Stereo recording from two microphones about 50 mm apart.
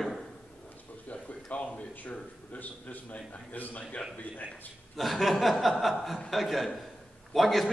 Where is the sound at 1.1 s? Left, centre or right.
Left.